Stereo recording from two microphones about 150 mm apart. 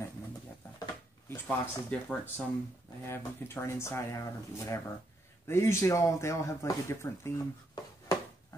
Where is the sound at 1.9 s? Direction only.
10° left (ahead or behind).